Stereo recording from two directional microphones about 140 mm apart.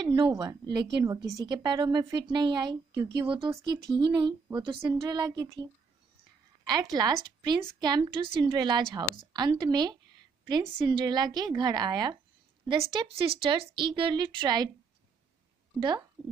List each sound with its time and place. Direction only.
0.0 s a woman's voice: 30° right (ahead or behind)
6.6 s a woman's voice: 30° right (ahead or behind)